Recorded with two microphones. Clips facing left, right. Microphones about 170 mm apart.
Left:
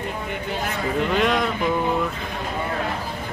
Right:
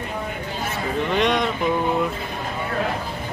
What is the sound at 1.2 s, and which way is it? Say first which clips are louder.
Speech: right 2 dB; 5° left (ahead or behind).